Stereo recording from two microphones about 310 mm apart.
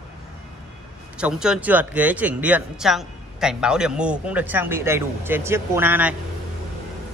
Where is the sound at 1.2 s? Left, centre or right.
Centre.